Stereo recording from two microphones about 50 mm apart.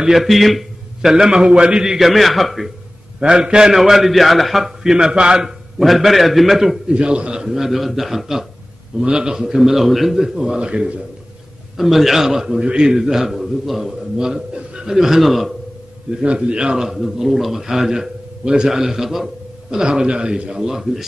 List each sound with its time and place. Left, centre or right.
0.0 s a man's voice: centre
1.1 s a man's voice: centre
2.0 s a man's voice: centre
3.2 s a man's voice: centre
4.9 s a man's voice: centre
5.8 s a man's voice: centre
6.9 s a man's voice: right
9.0 s a man's voice: centre
10.6 s a man's voice: centre
11.7 s a man's voice: centre
14.1 s a man's voice: centre
16.2 s a man's voice: centre
19.7 s a man's voice: centre